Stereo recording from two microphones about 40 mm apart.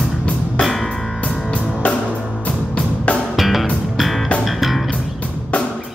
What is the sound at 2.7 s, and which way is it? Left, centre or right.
Music, left.